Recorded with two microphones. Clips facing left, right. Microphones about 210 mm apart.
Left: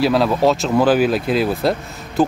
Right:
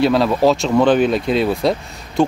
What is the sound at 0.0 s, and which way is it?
Speech, centre (ahead or behind).